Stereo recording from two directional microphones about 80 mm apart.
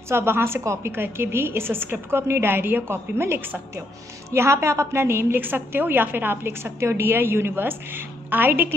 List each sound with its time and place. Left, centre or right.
0.1 s a woman's voice: right